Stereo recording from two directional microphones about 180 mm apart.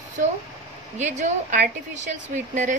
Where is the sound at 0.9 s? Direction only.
45° right (ahead or behind).